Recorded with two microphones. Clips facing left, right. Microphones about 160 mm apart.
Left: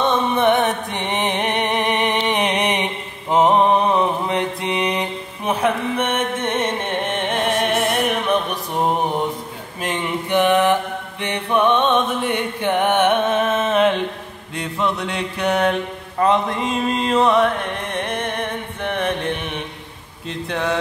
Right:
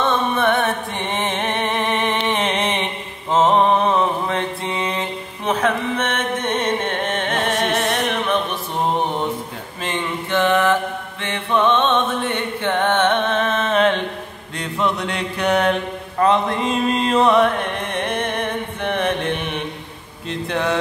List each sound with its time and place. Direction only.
0.0 s music: 20° left (ahead or behind)
9.8 s mantra: 15° left (ahead or behind)
16.2 s a sound: 10° left (ahead or behind)
17.1 s carnatic music: 5° left (ahead or behind)
18.8 s chant: 5° left (ahead or behind)
20.2 s speech: centre (ahead or behind)